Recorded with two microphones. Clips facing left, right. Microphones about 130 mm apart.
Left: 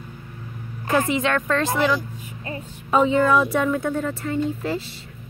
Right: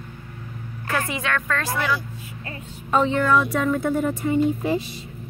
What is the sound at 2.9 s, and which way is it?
Speech, 10° left (ahead or behind).